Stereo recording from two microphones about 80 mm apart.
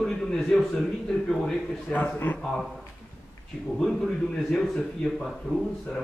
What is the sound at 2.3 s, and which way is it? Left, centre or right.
Speech, centre.